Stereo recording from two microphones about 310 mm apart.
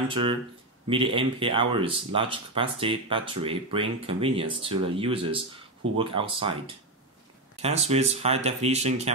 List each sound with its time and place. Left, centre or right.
0.1 s speech: centre
7.6 s speech: centre